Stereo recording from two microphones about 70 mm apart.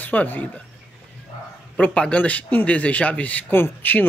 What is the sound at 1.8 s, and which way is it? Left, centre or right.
Speech, centre.